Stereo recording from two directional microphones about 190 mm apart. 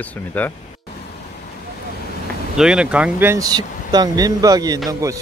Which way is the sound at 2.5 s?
5° right (ahead or behind).